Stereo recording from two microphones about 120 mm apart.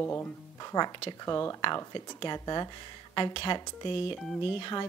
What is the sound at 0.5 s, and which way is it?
Speech, 35° left (ahead or behind).